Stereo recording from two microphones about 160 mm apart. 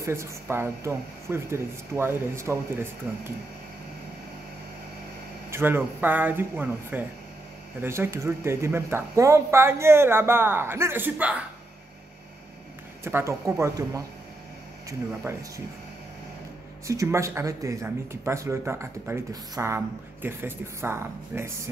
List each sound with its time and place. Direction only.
0.0 s a woman's voice: 20° right (ahead or behind)
5.5 s speech: 15° right (ahead or behind)
13.0 s speech: 15° right (ahead or behind)
16.8 s speech: 20° right (ahead or behind)